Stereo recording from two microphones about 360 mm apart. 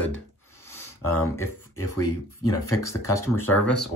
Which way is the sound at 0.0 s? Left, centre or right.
Left.